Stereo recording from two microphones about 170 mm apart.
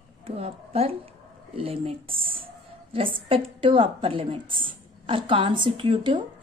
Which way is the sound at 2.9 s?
30° right (ahead or behind).